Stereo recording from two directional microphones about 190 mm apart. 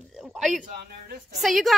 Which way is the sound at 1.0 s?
50° right (ahead or behind).